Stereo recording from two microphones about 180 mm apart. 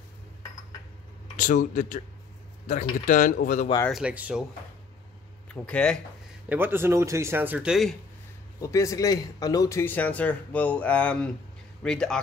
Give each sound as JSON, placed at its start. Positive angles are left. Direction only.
{"t": 1.3, "sound": "speech", "side_deg": 45}
{"t": 3.9, "sound": "speech", "side_deg": -5}
{"t": 5.5, "sound": "speech", "side_deg": 5}
{"t": 6.5, "sound": "speech", "side_deg": -10}
{"t": 8.5, "sound": "speech", "side_deg": 15}